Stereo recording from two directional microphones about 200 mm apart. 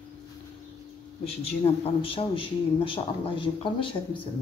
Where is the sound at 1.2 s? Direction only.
30° left (ahead or behind).